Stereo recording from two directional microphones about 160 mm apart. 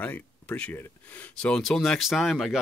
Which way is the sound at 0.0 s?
10° left (ahead or behind).